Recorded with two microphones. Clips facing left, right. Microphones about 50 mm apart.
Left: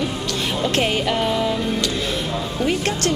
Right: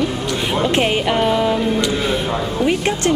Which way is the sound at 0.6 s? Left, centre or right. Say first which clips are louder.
Right 3 dB; centre.